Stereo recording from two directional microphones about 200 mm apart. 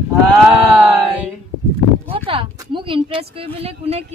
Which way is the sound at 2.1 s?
25° right (ahead or behind).